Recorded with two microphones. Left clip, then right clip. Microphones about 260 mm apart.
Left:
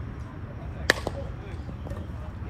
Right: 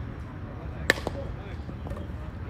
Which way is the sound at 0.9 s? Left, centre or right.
Centre.